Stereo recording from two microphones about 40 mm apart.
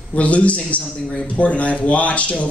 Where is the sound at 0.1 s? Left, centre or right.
Left.